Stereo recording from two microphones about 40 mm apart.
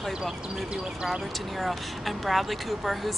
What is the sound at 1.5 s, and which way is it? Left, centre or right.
Speech, centre.